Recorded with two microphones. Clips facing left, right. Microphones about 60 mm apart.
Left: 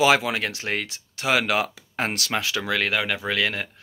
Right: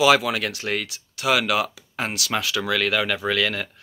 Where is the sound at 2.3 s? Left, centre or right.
Left.